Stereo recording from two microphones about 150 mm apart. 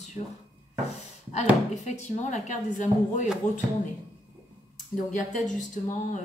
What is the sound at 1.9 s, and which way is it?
Speech, 55° left (ahead or behind).